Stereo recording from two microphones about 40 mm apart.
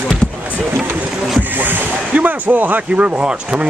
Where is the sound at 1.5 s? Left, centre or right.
Right.